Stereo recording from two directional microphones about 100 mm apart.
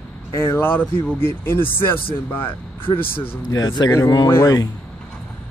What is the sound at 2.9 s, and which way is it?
Speech, 65° left (ahead or behind).